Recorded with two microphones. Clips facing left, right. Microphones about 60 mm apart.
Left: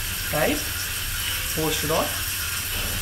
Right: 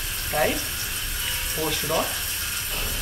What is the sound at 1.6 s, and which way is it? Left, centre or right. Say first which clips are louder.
Speech: left 2 dB; centre.